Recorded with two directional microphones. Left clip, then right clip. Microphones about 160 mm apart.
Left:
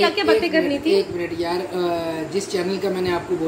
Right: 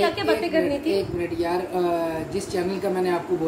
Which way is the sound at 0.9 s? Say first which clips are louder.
Left 4 dB; 10° right (ahead or behind).